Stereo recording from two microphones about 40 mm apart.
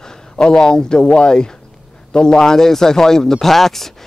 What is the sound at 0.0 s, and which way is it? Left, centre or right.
Speech, centre.